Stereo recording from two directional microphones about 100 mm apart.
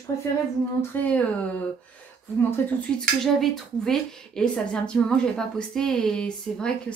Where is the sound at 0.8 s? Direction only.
15° left (ahead or behind).